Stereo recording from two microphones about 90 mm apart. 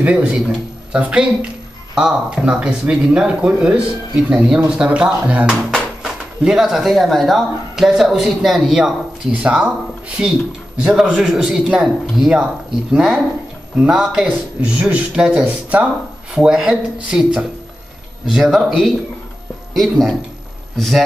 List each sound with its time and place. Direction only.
0.0 s speech: 15° right (ahead or behind)
14.2 s speech: 15° right (ahead or behind); by 21.0 s centre (ahead or behind)